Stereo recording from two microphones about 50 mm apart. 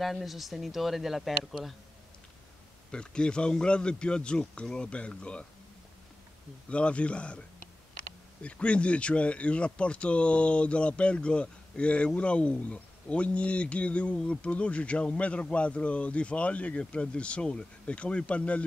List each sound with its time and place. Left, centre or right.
0.0 s speech: centre
2.9 s speech: centre
6.7 s speech: left